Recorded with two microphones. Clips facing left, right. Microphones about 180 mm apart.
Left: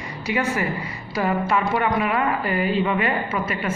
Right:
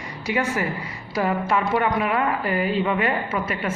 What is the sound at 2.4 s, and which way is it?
Speech, 40° right (ahead or behind).